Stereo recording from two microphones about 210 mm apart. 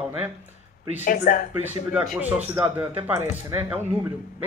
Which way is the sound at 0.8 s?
35° left (ahead or behind).